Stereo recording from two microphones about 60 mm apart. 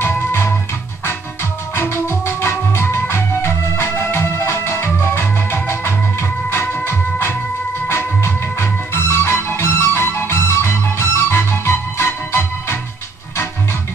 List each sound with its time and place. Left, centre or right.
0.0 s music: left
1.8 s music: left